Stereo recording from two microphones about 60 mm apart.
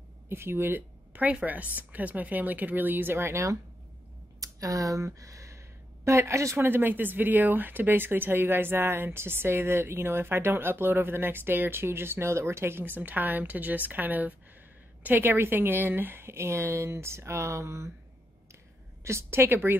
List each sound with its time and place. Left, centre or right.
0.3 s a woman's voice: right
4.4 s speech: right
12.8 s a woman's voice: right
19.0 s speech: right